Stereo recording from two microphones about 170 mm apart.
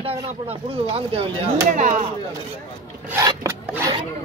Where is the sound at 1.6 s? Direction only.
50° right (ahead or behind).